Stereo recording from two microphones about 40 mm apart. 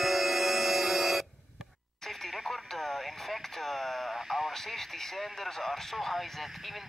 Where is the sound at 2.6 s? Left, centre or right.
Centre.